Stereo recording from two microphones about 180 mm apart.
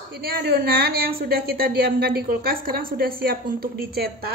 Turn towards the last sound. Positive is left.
turn(degrees=-55)  # may be behind; listen again after turning